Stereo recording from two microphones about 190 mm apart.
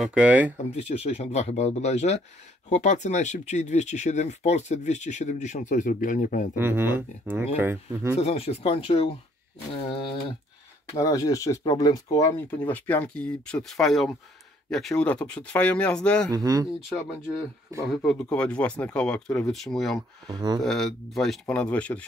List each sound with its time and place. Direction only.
0.0 s speech: 5° right (ahead or behind)
0.7 s speech: 35° left (ahead or behind)
6.5 s speech: 10° right (ahead or behind)
8.2 s speech: 30° left (ahead or behind); by 16.3 s 5° left (ahead or behind)
16.3 s speech: 20° right (ahead or behind)
18.0 s speech: 5° left (ahead or behind)
20.2 s speech: 20° right (ahead or behind)
20.6 s speech: centre (ahead or behind)